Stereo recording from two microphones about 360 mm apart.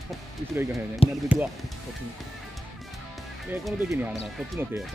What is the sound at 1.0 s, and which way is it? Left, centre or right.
Speech, centre.